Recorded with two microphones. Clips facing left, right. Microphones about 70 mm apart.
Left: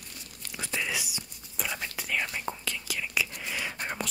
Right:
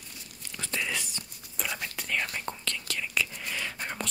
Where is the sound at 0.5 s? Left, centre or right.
Centre.